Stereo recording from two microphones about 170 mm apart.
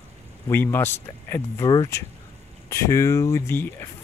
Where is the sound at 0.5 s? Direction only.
15° left (ahead or behind).